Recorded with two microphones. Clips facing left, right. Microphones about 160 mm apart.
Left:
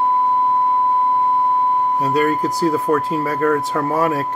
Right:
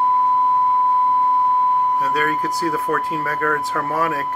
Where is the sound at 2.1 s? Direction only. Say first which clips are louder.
Left 4 dB; 25° left (ahead or behind).